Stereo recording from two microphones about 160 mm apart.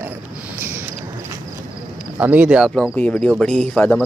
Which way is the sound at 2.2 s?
10° right (ahead or behind).